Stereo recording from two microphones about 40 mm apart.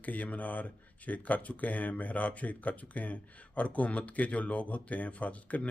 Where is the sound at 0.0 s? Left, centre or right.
Left.